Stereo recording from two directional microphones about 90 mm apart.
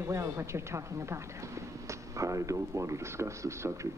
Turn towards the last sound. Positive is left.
turn(degrees=-30)  # may be behind; listen again after turning